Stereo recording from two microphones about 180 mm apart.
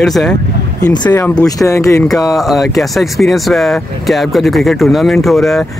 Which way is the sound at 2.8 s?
Centre (ahead or behind).